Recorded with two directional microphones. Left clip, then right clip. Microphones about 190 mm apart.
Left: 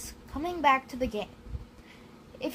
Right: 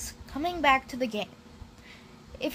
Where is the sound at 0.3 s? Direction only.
35° right (ahead or behind).